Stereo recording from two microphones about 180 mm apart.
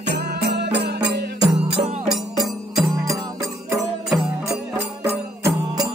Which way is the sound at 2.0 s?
Centre (ahead or behind).